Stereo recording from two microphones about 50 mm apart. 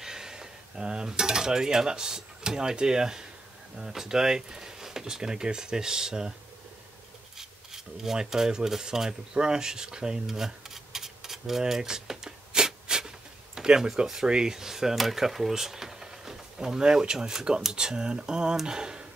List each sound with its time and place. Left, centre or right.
0.0 s cutlery: centre
3.7 s speech: centre
7.3 s filing: centre
13.6 s speech: centre